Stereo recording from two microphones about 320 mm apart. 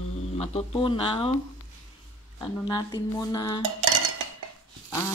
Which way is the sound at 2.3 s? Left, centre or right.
Centre.